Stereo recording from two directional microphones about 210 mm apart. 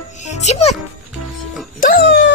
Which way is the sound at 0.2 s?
35° left (ahead or behind).